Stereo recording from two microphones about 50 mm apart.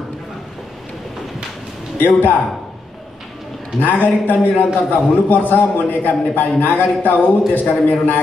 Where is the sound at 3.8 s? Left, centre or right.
Left.